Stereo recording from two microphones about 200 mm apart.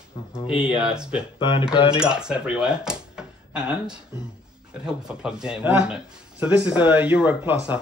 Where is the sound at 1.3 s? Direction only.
25° left (ahead or behind).